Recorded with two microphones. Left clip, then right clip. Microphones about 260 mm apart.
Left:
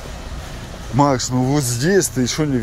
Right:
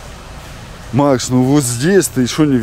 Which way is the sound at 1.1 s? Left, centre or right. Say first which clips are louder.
Right 5 dB; right.